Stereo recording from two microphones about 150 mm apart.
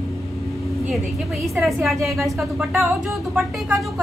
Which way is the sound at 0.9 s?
Centre (ahead or behind).